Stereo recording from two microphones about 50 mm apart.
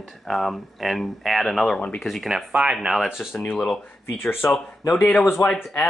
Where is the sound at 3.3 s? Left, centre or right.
Left.